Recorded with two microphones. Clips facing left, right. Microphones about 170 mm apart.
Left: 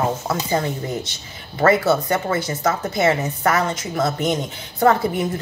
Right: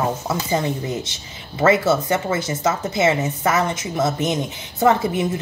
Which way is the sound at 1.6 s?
20° right (ahead or behind).